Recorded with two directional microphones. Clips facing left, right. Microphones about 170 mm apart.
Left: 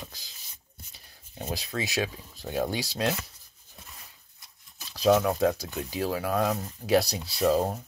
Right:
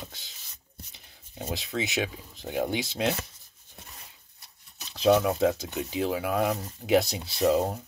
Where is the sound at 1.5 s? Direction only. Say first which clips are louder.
Right 1 dB; 20° right (ahead or behind).